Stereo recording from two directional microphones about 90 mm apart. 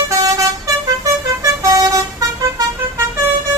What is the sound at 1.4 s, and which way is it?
Vehicle, 35° right (ahead or behind).